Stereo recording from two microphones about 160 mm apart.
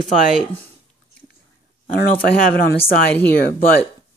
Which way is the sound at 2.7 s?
65° left (ahead or behind).